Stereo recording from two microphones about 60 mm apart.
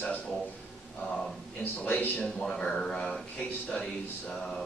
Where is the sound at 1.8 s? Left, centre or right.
Left.